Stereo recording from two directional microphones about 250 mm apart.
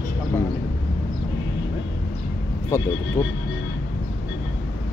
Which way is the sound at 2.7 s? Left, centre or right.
Centre.